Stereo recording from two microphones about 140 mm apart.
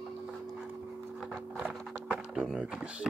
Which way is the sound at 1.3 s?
10° right (ahead or behind).